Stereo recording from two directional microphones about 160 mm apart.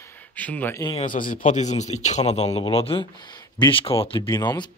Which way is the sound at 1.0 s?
60° left (ahead or behind).